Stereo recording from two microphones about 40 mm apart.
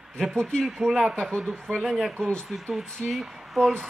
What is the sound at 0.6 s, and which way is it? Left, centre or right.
A man's voice, centre.